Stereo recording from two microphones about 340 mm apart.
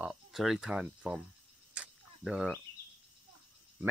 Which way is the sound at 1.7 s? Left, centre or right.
Centre.